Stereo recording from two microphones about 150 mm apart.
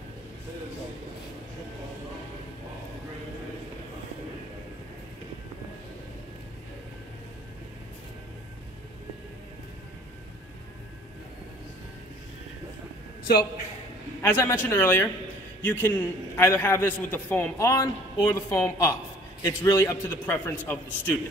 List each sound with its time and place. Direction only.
14.2 s a man's voice: 15° left (ahead or behind)